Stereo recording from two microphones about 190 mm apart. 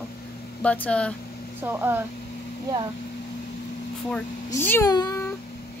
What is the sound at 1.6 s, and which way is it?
Speech, 10° right (ahead or behind).